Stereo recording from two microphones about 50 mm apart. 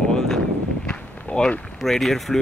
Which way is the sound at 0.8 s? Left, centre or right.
Centre.